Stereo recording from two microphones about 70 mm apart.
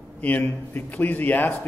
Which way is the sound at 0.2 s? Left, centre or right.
Left.